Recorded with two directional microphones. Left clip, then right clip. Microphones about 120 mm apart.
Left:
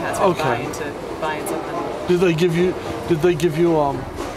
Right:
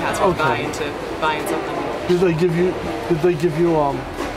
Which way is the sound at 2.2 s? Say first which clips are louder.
Left 1 dB; 20° left (ahead or behind).